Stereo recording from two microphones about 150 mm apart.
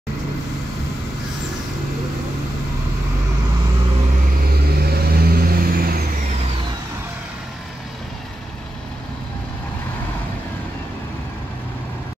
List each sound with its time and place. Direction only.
4.7 s vehicle: 90° right